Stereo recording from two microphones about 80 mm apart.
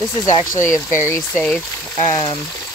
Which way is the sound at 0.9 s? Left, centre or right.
Left.